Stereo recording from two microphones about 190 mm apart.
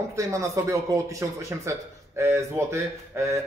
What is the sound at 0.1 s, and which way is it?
Speech, 15° right (ahead or behind).